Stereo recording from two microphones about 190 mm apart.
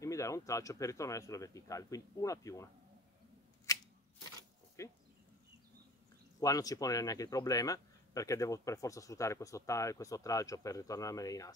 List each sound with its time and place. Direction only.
0.0 s speech: 15° left (ahead or behind)
3.7 s a sound: 15° left (ahead or behind)
4.8 s speech: 15° left (ahead or behind)
6.4 s speech: 20° left (ahead or behind)